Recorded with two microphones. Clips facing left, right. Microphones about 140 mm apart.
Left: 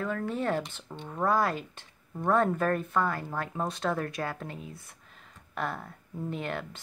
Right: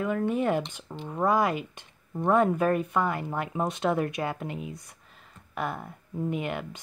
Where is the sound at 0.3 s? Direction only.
10° right (ahead or behind).